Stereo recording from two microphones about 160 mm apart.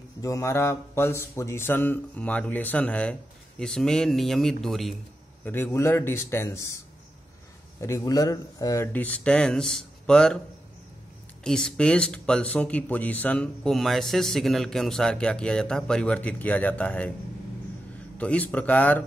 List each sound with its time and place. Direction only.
0.2 s speech: 20° left (ahead or behind); by 4.9 s centre (ahead or behind)
5.4 s speech: 15° left (ahead or behind)
7.8 s speech: 20° left (ahead or behind); by 10.4 s 5° left (ahead or behind)
11.4 s speech: 5° left (ahead or behind)
18.1 s speech: 10° left (ahead or behind)